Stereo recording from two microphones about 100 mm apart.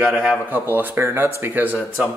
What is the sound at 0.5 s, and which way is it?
Speech, 20° right (ahead or behind).